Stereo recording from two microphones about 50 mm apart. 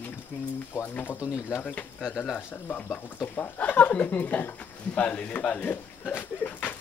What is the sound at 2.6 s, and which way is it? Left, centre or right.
Speech, left.